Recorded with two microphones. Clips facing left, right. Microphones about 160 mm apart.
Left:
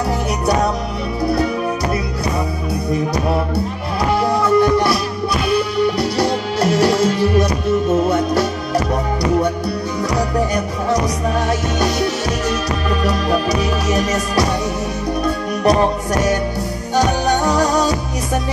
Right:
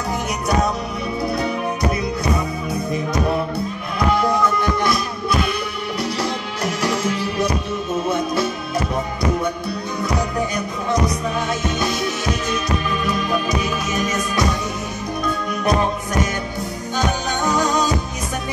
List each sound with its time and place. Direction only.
4.6 s music: 30° left (ahead or behind)
5.9 s music: 35° left (ahead or behind)
6.8 s music: 75° left (ahead or behind)
13.8 s music: 40° left (ahead or behind)